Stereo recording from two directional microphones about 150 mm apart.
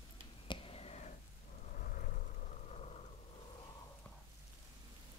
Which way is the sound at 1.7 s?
65° left (ahead or behind).